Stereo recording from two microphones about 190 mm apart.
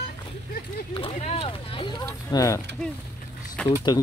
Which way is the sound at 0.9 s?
30° left (ahead or behind).